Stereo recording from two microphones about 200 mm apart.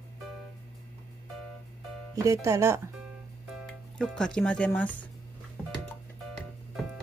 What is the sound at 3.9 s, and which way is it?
Speech, 5° left (ahead or behind).